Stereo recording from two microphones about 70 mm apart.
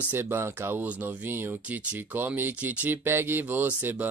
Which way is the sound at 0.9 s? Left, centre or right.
Right.